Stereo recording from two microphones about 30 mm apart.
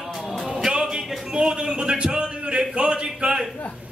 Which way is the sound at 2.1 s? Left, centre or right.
Right.